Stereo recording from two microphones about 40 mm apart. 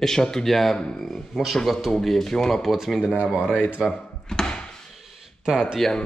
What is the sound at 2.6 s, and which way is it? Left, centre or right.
Speech, centre.